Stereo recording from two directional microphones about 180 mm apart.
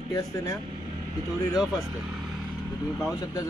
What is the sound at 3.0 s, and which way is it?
Speech, 20° left (ahead or behind).